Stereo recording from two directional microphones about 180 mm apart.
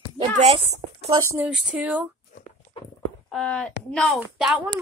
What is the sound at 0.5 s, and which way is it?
Speech, 35° right (ahead or behind).